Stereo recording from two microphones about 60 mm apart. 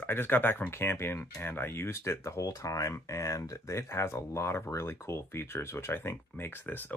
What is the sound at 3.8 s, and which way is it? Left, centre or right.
Speech, left.